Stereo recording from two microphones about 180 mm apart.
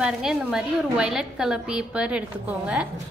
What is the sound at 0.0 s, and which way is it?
A woman's voice, 5° right (ahead or behind).